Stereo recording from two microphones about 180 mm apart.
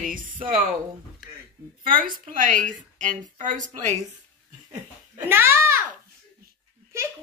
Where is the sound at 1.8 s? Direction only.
50° right (ahead or behind).